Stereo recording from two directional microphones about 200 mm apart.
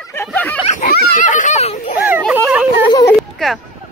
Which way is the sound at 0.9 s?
45° left (ahead or behind).